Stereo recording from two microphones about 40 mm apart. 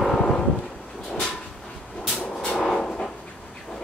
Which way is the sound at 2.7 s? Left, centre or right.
Centre.